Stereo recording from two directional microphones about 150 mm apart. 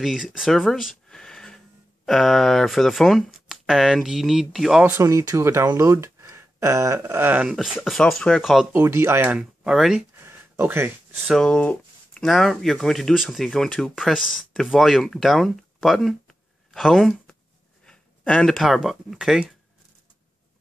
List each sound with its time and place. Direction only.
0.0 s speech: centre (ahead or behind)
4.9 s speech: 20° right (ahead or behind); by 8.6 s centre (ahead or behind)
8.7 s speech: 20° right (ahead or behind)
10.2 s a sound: 15° right (ahead or behind)
11.2 s speech: 5° left (ahead or behind)